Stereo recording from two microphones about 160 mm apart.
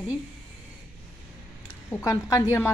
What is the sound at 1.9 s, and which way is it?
Speech, 20° left (ahead or behind).